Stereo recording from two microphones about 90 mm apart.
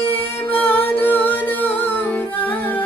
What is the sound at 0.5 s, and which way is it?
Music, 20° left (ahead or behind).